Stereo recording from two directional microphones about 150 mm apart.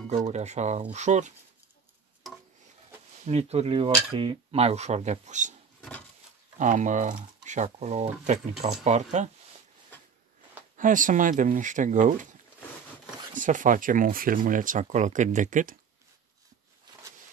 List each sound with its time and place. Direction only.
0.3 s speech: 50° right (ahead or behind)
3.3 s speech: 45° right (ahead or behind)
5.8 s a sound: 5° left (ahead or behind)
6.6 s speech: 55° right (ahead or behind)
10.8 s speech: 60° right (ahead or behind)
13.3 s speech: 60° right (ahead or behind)
16.9 s a sound: 30° right (ahead or behind)